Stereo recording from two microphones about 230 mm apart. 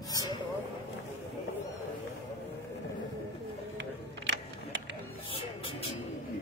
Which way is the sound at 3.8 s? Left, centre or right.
Right.